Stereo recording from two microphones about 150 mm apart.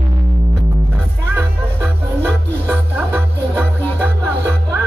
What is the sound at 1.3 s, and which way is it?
Music, 15° right (ahead or behind).